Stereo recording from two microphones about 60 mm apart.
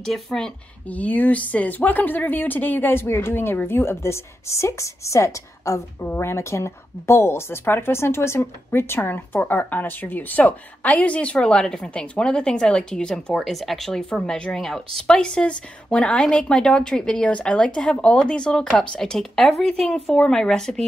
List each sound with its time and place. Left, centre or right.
0.0 s a woman's voice: centre
0.8 s a woman's voice: left
6.0 s a woman's voice: left
6.3 s a woman's voice: left; by 20.8 s centre